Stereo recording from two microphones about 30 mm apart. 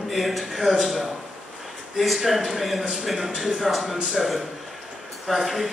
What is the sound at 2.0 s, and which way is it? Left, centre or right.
A man's voice, centre.